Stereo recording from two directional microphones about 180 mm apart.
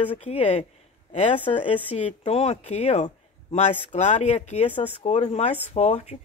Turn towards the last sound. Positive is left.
turn(degrees=35)  # may be behind; listen again after turning